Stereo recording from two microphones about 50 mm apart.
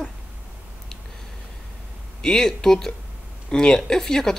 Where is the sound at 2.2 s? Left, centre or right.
Centre.